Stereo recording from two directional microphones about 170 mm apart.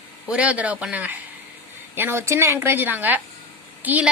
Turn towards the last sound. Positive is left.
turn(degrees=-10)  # may be behind; listen again after turning